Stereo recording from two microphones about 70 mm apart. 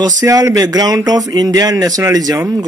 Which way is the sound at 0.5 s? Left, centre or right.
Right.